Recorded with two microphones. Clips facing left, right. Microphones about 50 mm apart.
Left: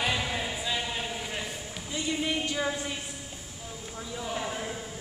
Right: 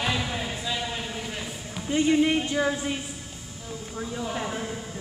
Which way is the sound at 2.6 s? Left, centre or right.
Centre.